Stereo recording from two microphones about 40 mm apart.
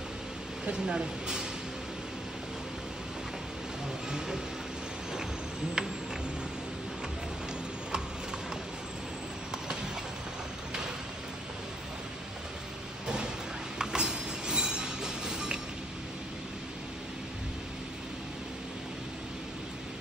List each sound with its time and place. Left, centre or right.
0.7 s speech: right
5.8 s tick-tock: centre
13.0 s a sound: centre